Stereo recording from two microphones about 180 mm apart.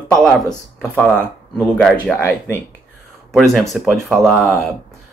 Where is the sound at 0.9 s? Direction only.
5° left (ahead or behind).